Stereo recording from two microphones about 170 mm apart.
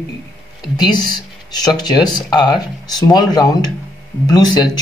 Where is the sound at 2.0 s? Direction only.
25° left (ahead or behind).